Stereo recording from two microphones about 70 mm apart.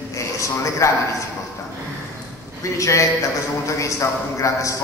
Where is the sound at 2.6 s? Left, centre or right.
Left.